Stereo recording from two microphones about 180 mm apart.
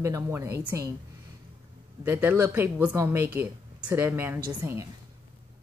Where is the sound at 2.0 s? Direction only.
10° right (ahead or behind).